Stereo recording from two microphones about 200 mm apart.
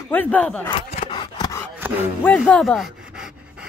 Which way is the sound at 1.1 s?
20° left (ahead or behind).